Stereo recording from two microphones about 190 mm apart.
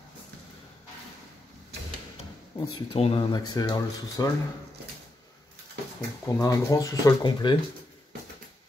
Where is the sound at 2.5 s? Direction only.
20° left (ahead or behind).